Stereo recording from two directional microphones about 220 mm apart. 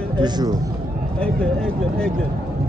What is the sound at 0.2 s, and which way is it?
Speech, 20° right (ahead or behind).